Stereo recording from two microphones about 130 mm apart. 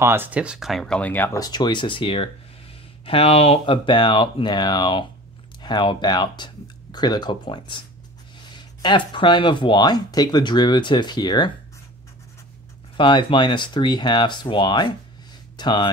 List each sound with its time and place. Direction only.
0.0 s speech: 15° right (ahead or behind); by 1.4 s 15° left (ahead or behind)
1.4 s speech: 35° left (ahead or behind)
12.9 s speech: 40° left (ahead or behind)